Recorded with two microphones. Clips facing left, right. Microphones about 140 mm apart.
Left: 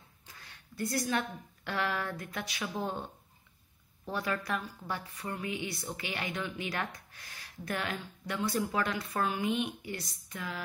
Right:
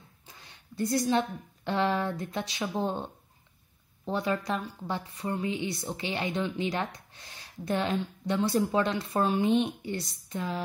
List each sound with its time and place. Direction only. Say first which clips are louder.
0.3 s a woman's voice: right 2 dB; 20° right (ahead or behind)